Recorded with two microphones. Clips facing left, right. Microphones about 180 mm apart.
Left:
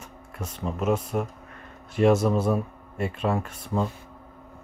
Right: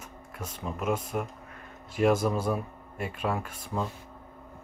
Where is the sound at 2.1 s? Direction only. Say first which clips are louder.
Left 4 dB; 25° left (ahead or behind).